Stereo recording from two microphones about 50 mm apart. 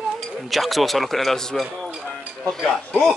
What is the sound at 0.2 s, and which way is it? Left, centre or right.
Speech, centre.